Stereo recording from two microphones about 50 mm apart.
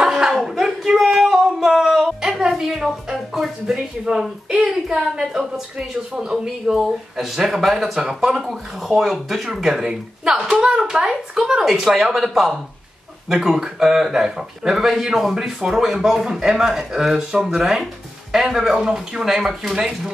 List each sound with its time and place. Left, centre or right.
0.0 s hands: centre
0.9 s singing: centre
1.8 s a sound: centre
3.6 s speech: centre